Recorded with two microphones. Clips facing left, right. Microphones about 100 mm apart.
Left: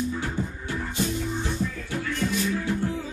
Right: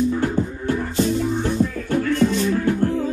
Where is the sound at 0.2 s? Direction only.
55° right (ahead or behind).